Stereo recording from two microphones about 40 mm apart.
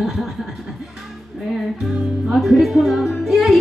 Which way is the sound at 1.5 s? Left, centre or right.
Centre.